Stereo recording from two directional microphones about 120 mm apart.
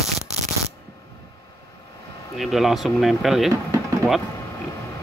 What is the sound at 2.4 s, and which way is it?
Speech, centre (ahead or behind).